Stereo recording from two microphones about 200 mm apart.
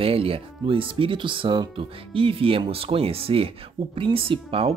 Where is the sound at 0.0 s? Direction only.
30° right (ahead or behind).